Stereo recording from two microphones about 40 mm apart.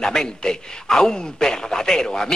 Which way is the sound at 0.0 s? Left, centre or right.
Centre.